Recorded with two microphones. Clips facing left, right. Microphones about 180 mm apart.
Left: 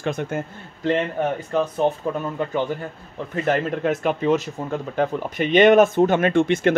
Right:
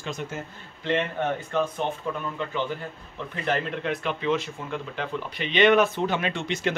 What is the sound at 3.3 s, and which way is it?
Speech, 40° left (ahead or behind).